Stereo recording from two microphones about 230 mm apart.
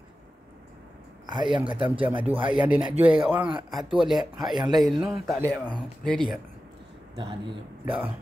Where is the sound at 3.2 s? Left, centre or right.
Centre.